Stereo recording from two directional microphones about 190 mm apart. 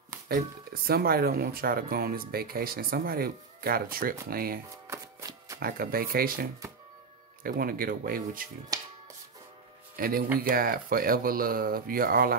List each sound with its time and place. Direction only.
0.8 s speech: 50° right (ahead or behind)
4.8 s shuffling cards: 15° right (ahead or behind)
5.6 s speech: 50° right (ahead or behind)
7.4 s speech: 50° right (ahead or behind)
8.7 s finger snapping: 20° right (ahead or behind)
9.9 s speech: 50° right (ahead or behind)